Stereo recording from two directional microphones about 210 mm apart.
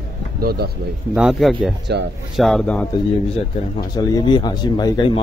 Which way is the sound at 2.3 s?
Centre (ahead or behind).